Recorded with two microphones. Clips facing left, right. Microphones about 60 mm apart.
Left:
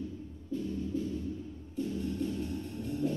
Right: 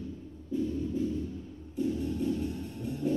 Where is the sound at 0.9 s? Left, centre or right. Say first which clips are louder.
Right 3 dB; centre.